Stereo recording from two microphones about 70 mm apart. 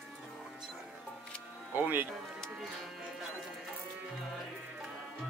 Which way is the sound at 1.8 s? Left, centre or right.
Right.